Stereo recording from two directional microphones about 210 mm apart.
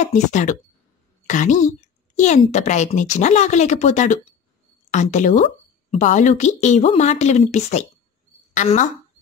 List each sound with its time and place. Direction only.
0.0 s a woman's voice: 35° left (ahead or behind)